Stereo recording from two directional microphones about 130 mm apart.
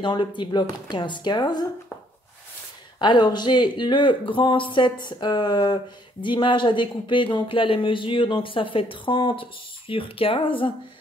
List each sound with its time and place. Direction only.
0.0 s speech: 35° left (ahead or behind)
3.0 s speech: 35° left (ahead or behind)